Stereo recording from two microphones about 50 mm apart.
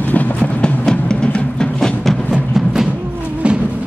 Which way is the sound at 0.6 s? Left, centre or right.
Centre.